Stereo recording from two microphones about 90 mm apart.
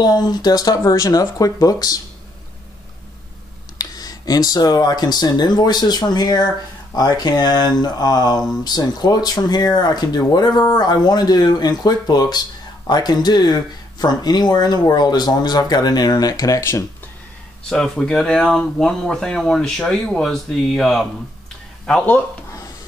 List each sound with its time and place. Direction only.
0.0 s speech: 50° left (ahead or behind)
3.7 s speech: 45° left (ahead or behind)
17.6 s speech: 10° left (ahead or behind)
21.8 s speech: 15° left (ahead or behind)